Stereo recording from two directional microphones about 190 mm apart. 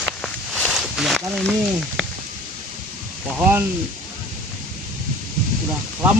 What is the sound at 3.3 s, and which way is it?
Speech, 5° right (ahead or behind).